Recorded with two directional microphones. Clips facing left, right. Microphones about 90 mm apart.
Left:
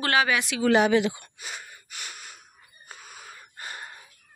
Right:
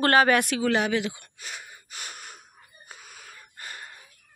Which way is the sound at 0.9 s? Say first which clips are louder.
Left 5 dB; 25° left (ahead or behind).